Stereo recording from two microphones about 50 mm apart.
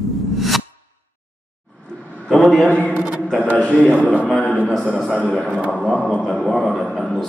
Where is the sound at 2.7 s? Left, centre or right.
Left.